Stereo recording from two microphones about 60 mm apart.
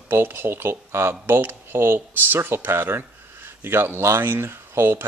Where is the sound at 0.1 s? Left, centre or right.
Right.